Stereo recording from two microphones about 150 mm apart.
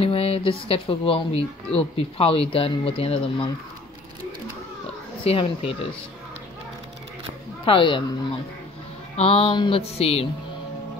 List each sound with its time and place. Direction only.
0.0 s speech: 40° left (ahead or behind)
5.2 s speech: 40° left (ahead or behind)
7.6 s speech: 35° left (ahead or behind)
9.1 s speech: 40° left (ahead or behind)